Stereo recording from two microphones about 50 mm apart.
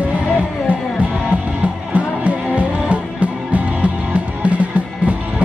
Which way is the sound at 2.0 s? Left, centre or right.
Right.